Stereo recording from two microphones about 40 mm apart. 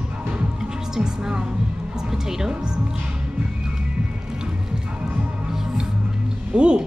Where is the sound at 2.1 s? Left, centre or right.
Centre.